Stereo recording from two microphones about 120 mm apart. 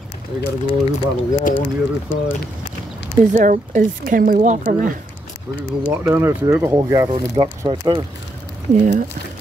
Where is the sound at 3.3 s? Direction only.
90° right.